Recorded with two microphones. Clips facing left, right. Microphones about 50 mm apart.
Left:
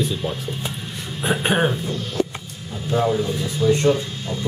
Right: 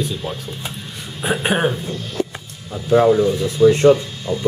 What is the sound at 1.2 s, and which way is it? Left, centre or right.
Speech, centre.